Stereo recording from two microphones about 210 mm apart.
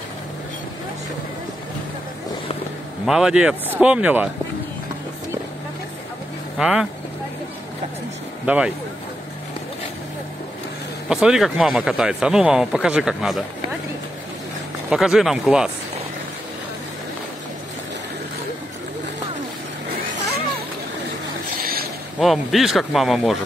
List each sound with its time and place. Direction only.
3.1 s speech: 5° right (ahead or behind)
6.6 s speech: 5° right (ahead or behind)
8.5 s speech: 5° right (ahead or behind)
11.1 s speech: 5° right (ahead or behind)
14.9 s speech: centre (ahead or behind)
21.5 s boat: 45° right (ahead or behind)
22.2 s speech: centre (ahead or behind)